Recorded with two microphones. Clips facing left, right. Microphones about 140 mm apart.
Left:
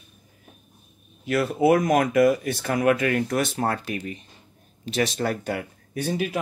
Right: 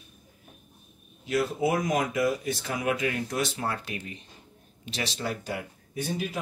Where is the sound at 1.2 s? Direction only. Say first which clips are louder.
Left 5 dB; 65° left (ahead or behind).